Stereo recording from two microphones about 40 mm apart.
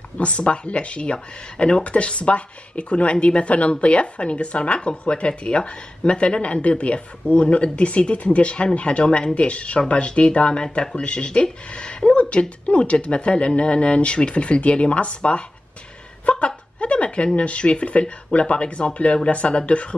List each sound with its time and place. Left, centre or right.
0.2 s speech: left
16.3 s chuckle: left
17.4 s speech: left